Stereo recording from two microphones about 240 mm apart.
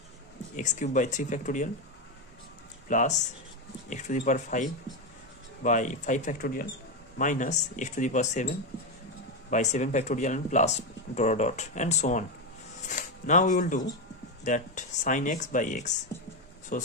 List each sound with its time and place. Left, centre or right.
0.6 s speech: left
2.9 s speech: left
12.8 s music: left
14.4 s speech: left